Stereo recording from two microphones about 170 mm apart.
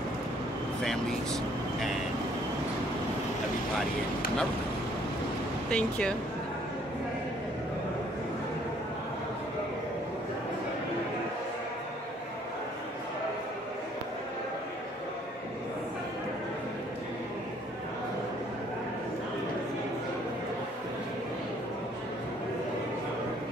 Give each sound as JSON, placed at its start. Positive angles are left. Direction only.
{"t": 0.8, "sound": "speech", "side_deg": 0}
{"t": 5.7, "sound": "speech", "side_deg": 5}